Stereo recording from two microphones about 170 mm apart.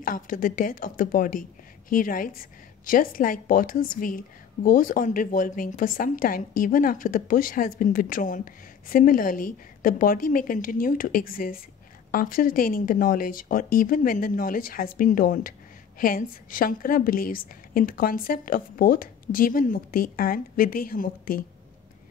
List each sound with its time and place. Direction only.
0.0 s a woman's voice: 55° left (ahead or behind)